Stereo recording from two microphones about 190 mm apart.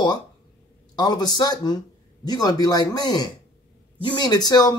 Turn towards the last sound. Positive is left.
turn(degrees=20)  # may be behind; listen again after turning